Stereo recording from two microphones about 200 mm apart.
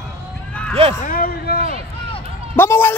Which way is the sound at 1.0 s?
45° left (ahead or behind).